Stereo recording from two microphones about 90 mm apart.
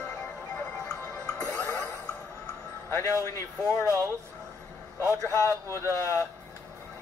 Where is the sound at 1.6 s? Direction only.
40° left (ahead or behind).